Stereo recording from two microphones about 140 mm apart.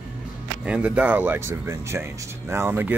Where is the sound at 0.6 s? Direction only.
10° right (ahead or behind).